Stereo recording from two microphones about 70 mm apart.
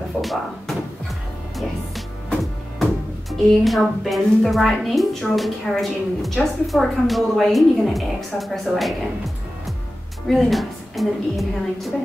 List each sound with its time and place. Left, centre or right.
0.2 s speech: centre
2.8 s music: centre
10.3 s music: centre